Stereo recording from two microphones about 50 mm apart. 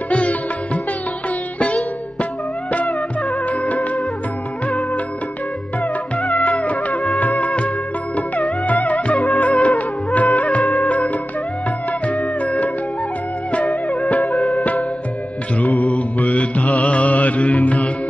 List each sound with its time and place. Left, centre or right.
0.1 s music: left
3.4 s music: left
6.4 s music: left
7.2 s music of bollywood: left
8.6 s music: left
9.4 s music of bollywood: left
12.4 s music: left
13.7 s music: centre
15.6 s mantra: left